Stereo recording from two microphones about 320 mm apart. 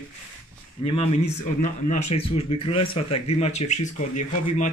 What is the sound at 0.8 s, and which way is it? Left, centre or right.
Speech, centre.